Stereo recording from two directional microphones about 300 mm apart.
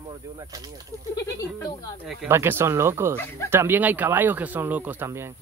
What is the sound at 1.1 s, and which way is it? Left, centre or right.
Speech, centre.